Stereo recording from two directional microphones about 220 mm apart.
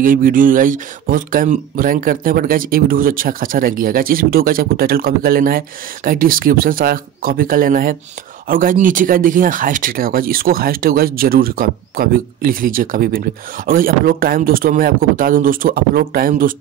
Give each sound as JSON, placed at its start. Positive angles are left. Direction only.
{"t": 0.0, "sound": "speech", "side_deg": -40}